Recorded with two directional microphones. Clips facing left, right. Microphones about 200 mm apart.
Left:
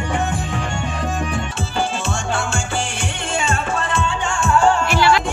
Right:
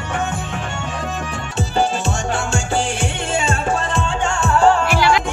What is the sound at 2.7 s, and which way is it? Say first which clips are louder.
Music: right 4 dB; 35° right (ahead or behind).